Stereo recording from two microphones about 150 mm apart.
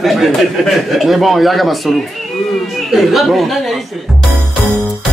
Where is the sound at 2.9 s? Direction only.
Centre (ahead or behind).